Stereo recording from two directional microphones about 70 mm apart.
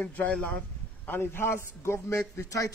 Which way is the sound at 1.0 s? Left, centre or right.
Left.